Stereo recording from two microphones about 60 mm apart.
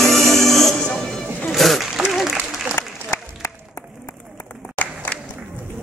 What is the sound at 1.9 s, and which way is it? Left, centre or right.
Applause, centre.